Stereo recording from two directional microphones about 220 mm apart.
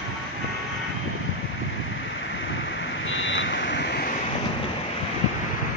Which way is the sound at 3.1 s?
60° left (ahead or behind).